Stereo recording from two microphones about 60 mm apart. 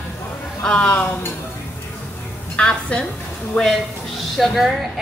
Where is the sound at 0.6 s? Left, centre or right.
Centre.